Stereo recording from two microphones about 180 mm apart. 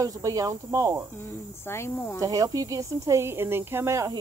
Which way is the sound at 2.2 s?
20° right (ahead or behind).